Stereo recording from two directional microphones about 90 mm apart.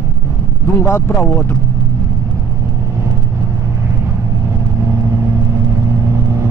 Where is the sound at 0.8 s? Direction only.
30° left (ahead or behind).